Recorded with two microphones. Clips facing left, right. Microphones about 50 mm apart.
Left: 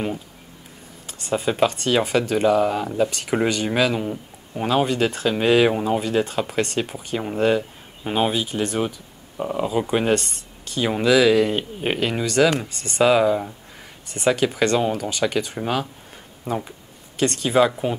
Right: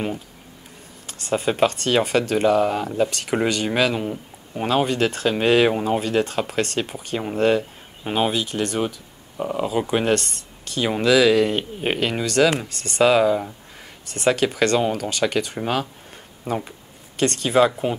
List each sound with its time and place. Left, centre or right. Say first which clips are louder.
1.3 s speech: right 1 dB; centre
10.1 s speech: even; centre
12.6 s speech: even; centre
13.0 s speech: even; centre
15.5 s speech: even; centre